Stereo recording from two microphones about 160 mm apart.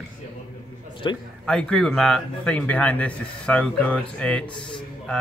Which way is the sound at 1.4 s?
5° left (ahead or behind).